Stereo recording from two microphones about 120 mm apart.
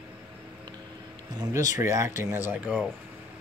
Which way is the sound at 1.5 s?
25° right (ahead or behind).